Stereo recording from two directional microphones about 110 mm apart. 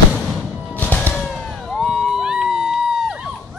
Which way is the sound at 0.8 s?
15° left (ahead or behind).